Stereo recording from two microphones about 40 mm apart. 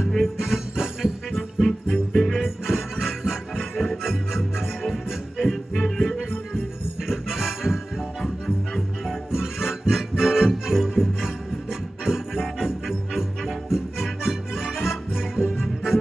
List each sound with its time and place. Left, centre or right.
0.1 s music: centre
1.3 s music: centre
2.4 s music: centre
7.1 s music: centre